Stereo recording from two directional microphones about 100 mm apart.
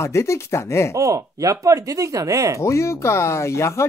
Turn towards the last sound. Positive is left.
turn(degrees=30)  # may be behind; listen again after turning